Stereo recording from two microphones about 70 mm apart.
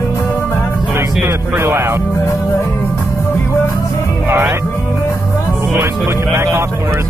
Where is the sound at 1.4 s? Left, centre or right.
Right.